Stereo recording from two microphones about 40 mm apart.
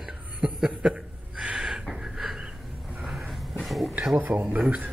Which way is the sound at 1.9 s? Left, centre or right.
Centre.